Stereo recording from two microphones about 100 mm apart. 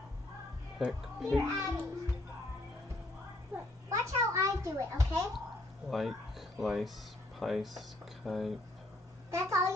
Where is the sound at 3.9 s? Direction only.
30° right (ahead or behind).